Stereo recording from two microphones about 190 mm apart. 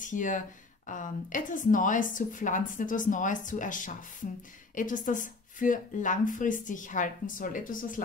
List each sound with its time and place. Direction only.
0.0 s speech: 40° left (ahead or behind)